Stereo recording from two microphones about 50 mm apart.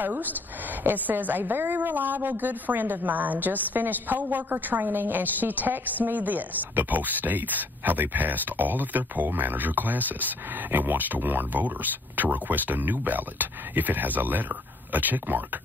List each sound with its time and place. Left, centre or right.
0.0 s a woman's voice: right